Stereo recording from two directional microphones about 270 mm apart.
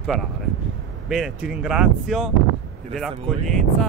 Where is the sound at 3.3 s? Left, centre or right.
Centre.